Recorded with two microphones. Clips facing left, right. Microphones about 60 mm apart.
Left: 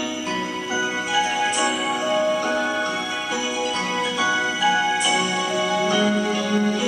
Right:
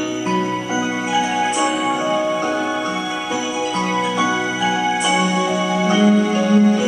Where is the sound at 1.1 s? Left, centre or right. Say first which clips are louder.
Right 3 dB; right.